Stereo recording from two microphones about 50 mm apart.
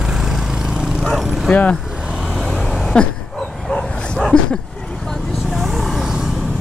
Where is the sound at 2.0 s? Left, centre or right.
Centre.